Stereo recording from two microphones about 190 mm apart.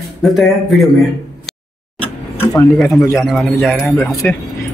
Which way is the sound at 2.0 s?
10° left (ahead or behind).